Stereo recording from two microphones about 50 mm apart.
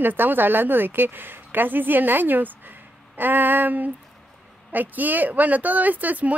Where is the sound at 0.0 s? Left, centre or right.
Right.